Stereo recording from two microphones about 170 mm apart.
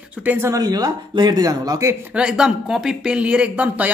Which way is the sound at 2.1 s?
5° right (ahead or behind).